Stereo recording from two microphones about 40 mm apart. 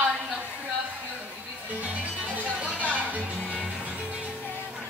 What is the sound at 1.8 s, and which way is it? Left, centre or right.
Music, right.